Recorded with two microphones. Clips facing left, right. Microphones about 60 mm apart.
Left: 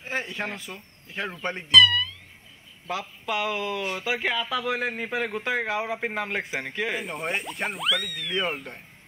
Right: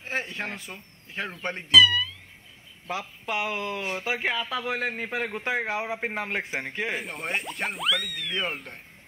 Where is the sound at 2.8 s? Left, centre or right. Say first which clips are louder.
Left 1 dB; right.